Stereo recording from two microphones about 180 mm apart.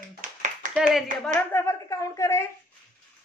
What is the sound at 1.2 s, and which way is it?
A woman's voice, 15° left (ahead or behind).